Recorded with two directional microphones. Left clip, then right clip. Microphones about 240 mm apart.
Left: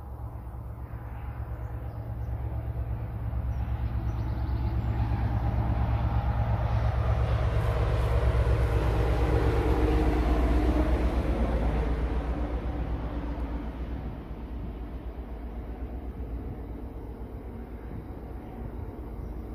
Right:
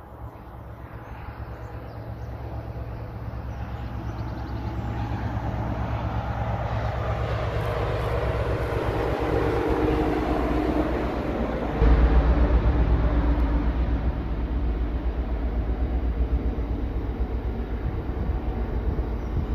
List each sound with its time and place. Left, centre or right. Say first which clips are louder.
4.9 s vehicle: right 3 dB; centre; by 13.7 s left